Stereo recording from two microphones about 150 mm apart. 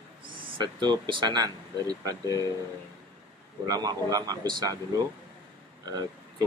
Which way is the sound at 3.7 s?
25° right (ahead or behind).